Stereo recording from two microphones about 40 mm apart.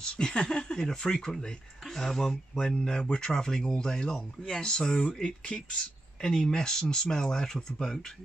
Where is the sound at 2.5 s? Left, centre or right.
Left.